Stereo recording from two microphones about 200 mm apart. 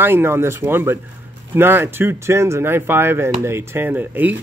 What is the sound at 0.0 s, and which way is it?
Speech, 10° right (ahead or behind).